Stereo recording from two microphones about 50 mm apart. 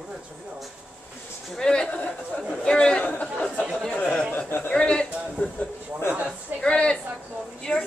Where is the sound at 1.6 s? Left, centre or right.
Centre.